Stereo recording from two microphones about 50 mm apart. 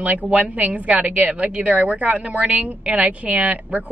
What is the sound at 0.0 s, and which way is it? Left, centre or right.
A woman's voice, right.